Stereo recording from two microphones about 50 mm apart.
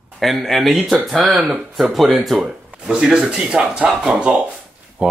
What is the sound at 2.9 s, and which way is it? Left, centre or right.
Speech, centre.